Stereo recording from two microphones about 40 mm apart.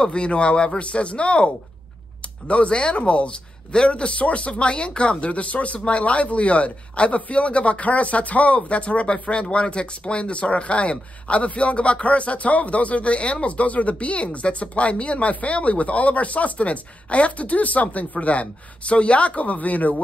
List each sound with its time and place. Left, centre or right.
0.0 s speech: left